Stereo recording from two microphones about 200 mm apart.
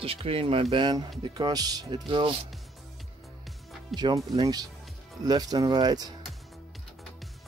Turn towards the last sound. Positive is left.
turn(degrees=-20)  # may be behind; listen again after turning